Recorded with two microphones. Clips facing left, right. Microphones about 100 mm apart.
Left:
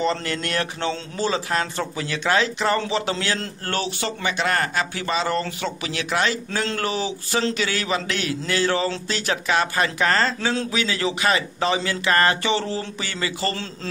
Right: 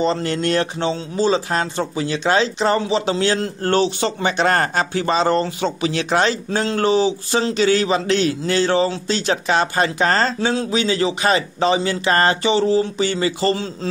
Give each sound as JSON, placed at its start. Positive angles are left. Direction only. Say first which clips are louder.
{"t": 0.0, "sound": "a man's voice", "louder": "right 5 dB", "side_deg": -25}